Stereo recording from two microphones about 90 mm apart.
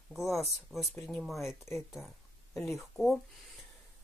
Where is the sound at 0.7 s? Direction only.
Centre (ahead or behind).